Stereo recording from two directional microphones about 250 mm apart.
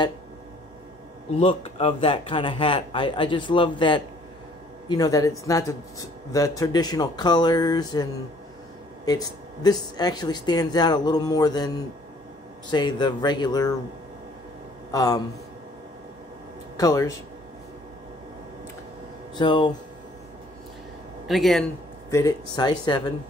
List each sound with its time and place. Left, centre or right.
1.4 s speech: left
14.9 s speech: centre
16.7 s speech: centre
19.3 s speech: centre
21.3 s a man's voice: centre
22.1 s speech: centre